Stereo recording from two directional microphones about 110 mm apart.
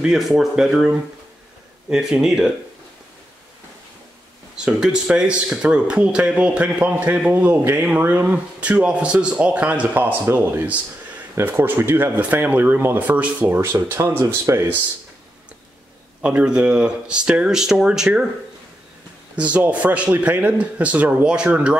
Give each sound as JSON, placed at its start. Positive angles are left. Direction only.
{"t": 0.0, "sound": "speech", "side_deg": -5}
{"t": 4.6, "sound": "a man's voice", "side_deg": -5}
{"t": 16.2, "sound": "a man's voice", "side_deg": -10}
{"t": 19.3, "sound": "a man's voice", "side_deg": -15}